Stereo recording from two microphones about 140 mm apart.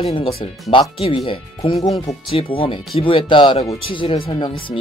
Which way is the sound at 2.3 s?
40° left (ahead or behind).